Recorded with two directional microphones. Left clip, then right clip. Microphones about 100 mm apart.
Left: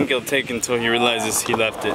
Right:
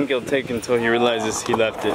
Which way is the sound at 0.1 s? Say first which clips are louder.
Left 1 dB; 30° left (ahead or behind).